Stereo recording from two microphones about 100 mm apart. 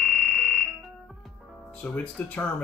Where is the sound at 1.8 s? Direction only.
10° left (ahead or behind).